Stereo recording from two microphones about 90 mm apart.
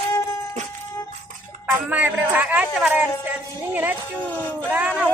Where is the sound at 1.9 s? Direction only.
20° right (ahead or behind).